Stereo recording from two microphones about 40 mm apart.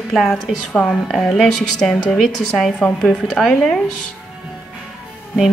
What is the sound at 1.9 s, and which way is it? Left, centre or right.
A woman's voice, centre.